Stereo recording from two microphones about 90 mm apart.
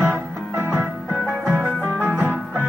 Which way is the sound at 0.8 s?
Centre (ahead or behind).